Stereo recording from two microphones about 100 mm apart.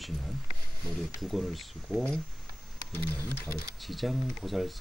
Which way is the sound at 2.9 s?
20° left (ahead or behind).